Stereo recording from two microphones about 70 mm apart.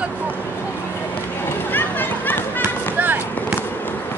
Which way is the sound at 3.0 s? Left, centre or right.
Right.